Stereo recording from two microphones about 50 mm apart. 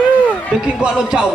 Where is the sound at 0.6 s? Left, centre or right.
Right.